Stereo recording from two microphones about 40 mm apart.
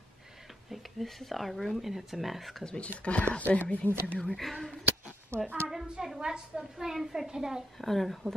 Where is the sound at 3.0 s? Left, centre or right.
Left.